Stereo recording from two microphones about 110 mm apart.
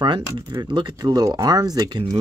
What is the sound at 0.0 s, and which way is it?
Speech, 45° right (ahead or behind).